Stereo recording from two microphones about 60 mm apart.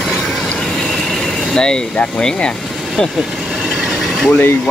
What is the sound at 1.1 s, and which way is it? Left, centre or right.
Vehicle, centre.